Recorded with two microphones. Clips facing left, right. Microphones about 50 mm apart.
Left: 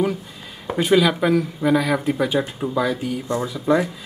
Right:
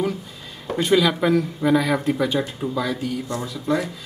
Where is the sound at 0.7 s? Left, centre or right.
Centre.